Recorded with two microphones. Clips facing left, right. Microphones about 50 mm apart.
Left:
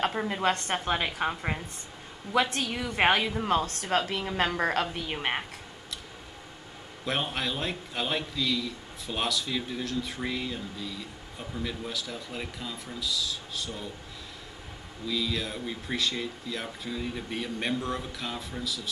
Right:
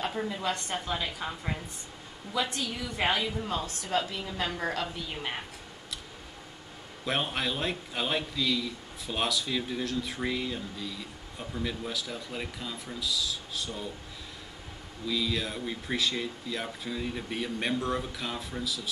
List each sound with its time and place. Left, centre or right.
0.3 s a woman's voice: left
7.1 s a man's voice: centre
15.0 s a man's voice: centre